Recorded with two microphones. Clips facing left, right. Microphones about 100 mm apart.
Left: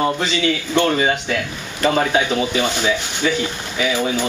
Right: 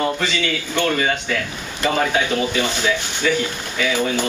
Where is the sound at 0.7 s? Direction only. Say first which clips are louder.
Left 2 dB; 20° left (ahead or behind).